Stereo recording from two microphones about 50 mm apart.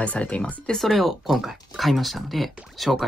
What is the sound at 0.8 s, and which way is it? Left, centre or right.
Speech, centre.